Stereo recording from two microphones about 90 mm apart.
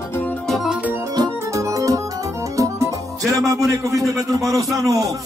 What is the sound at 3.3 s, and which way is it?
A man's voice, 40° right (ahead or behind).